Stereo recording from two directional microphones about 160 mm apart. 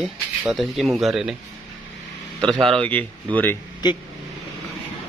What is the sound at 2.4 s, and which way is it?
Speech, centre (ahead or behind).